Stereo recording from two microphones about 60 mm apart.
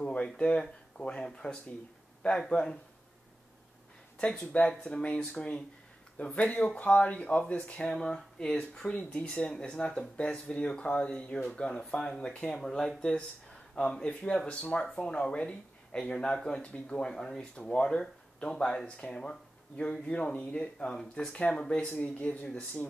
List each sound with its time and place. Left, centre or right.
0.0 s speech: centre
4.2 s speech: centre